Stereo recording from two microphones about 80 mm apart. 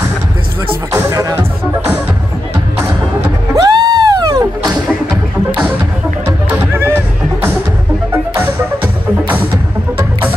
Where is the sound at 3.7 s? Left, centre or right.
Right.